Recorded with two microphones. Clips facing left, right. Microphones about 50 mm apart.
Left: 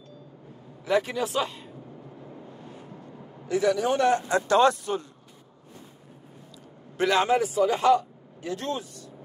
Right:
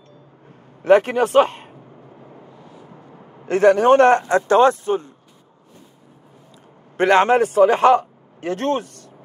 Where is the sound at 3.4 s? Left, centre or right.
Right.